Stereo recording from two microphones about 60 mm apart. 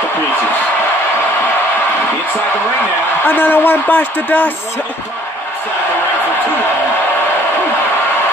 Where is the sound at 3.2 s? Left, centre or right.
Left.